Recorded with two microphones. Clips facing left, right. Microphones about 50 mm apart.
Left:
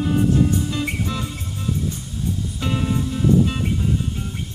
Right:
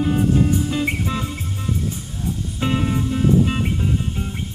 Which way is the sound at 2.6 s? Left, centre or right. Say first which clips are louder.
Right 3 dB; right.